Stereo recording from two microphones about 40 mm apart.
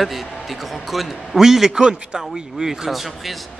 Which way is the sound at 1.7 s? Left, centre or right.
Centre.